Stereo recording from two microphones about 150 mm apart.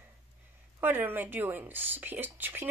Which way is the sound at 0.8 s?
15° right (ahead or behind).